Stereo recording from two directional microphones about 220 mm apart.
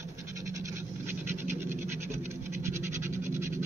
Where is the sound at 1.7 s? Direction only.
10° right (ahead or behind).